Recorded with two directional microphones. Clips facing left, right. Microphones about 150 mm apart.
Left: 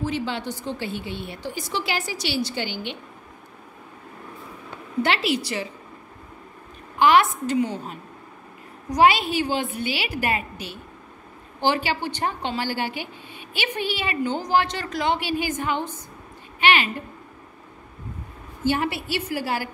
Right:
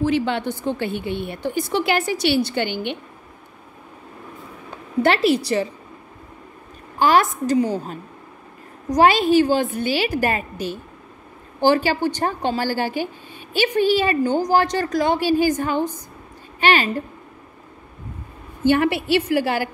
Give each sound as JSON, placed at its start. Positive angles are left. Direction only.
{"t": 0.0, "sound": "a woman's voice", "side_deg": -65}
{"t": 5.0, "sound": "a woman's voice", "side_deg": -45}
{"t": 7.0, "sound": "a woman's voice", "side_deg": -40}
{"t": 18.6, "sound": "a woman's voice", "side_deg": -60}